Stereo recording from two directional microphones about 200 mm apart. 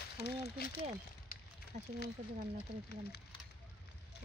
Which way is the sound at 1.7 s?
35° right (ahead or behind).